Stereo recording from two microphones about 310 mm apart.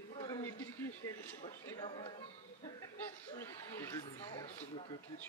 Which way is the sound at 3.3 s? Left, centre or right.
Centre.